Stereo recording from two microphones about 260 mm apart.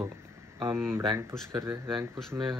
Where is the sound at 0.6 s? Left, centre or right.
Centre.